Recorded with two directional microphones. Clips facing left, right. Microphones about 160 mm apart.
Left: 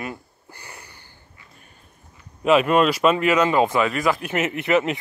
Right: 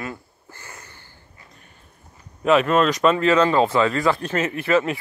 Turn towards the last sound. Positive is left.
turn(degrees=20)  # may be behind; listen again after turning